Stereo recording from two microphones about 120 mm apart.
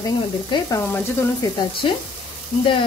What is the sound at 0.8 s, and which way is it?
Speech, 15° left (ahead or behind).